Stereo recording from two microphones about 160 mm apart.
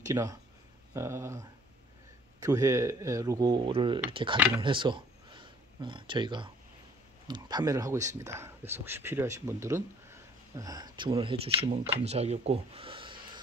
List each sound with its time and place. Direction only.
0.1 s speech: 20° right (ahead or behind)